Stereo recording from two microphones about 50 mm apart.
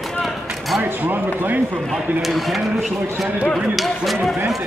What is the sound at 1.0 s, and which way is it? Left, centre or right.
Speech, right.